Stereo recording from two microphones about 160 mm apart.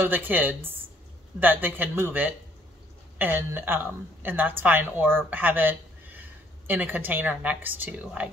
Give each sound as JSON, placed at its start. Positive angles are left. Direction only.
{"t": 0.0, "sound": "a woman's voice", "side_deg": -10}